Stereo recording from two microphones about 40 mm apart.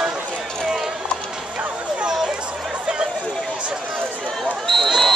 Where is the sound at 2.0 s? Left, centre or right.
Centre.